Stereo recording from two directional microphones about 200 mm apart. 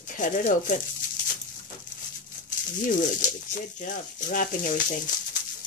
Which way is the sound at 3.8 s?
40° left (ahead or behind).